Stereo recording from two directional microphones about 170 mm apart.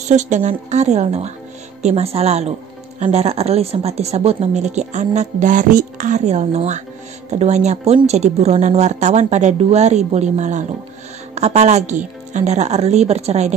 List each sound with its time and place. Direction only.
0.1 s speech: 45° right (ahead or behind)